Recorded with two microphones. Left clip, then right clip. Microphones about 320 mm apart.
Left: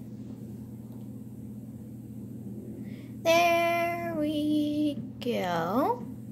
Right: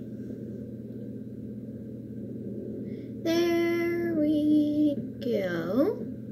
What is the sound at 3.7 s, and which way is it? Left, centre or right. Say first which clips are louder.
Child singing: even; left.